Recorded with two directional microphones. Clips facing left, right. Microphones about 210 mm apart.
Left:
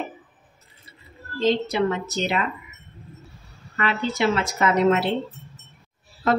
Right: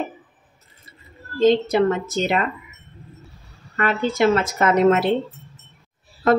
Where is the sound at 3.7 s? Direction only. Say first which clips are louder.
Right 3 dB; 45° right (ahead or behind).